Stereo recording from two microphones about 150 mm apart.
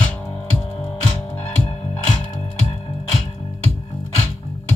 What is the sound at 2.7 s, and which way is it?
Music, 40° left (ahead or behind).